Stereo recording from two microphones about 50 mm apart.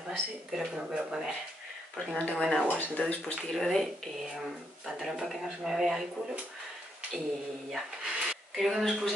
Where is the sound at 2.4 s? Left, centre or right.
Centre.